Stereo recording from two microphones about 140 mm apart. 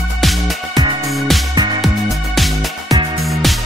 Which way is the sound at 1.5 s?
30° right (ahead or behind).